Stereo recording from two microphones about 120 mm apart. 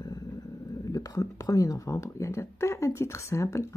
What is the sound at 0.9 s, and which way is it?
Speech, 30° left (ahead or behind).